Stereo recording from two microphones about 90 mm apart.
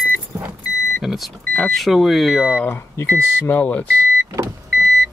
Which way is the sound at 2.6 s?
20° left (ahead or behind).